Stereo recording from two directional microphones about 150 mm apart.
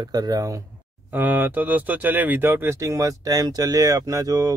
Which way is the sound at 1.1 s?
10° right (ahead or behind).